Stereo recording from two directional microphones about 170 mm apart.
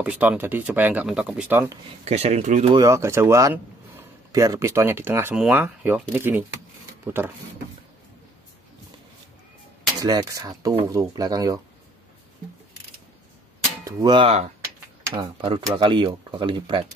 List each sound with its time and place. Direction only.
0.0 s speech: 10° right (ahead or behind)
2.0 s speech: 40° right (ahead or behind)
2.7 s speech: 20° right (ahead or behind)
10.0 s speech: 20° right (ahead or behind)
13.8 s speech: 20° right (ahead or behind)